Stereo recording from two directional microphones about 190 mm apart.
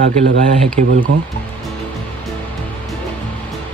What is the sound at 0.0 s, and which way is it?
Speech, 45° right (ahead or behind).